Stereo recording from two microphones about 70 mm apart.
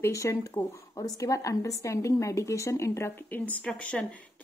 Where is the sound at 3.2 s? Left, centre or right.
Left.